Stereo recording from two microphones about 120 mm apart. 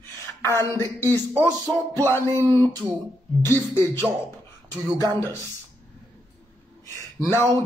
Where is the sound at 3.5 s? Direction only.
20° left (ahead or behind).